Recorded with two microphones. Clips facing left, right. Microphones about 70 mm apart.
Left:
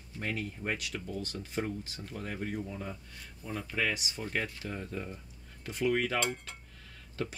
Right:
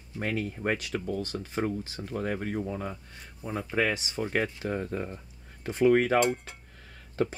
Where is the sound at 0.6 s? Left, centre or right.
Right.